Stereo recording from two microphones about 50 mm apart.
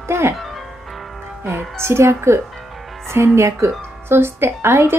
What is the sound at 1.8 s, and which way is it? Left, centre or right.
A woman's voice, right.